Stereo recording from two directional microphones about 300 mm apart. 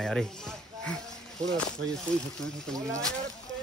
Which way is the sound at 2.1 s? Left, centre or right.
Centre.